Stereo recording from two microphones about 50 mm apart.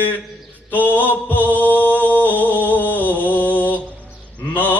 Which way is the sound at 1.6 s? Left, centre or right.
Left.